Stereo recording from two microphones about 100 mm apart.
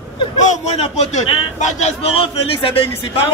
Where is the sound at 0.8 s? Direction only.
90° left.